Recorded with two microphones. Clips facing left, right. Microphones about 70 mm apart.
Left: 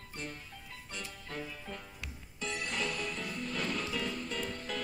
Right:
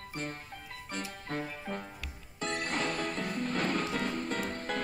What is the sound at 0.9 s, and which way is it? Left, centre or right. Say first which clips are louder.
Music: right 6 dB; right.